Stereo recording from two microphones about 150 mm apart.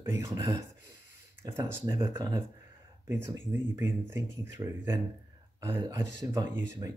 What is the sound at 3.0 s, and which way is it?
Speech, 20° right (ahead or behind).